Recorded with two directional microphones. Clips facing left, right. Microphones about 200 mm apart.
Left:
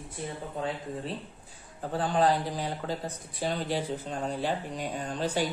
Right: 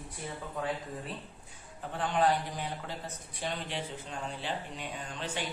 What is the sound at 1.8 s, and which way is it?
A man's voice, 35° left (ahead or behind).